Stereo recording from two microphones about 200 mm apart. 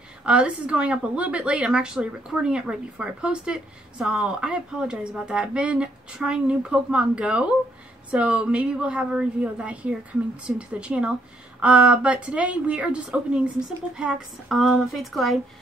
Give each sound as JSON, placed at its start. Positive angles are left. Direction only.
{"t": 0.2, "sound": "a woman's voice", "side_deg": -5}